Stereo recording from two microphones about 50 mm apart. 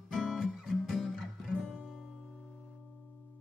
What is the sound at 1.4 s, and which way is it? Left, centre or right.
Music, centre.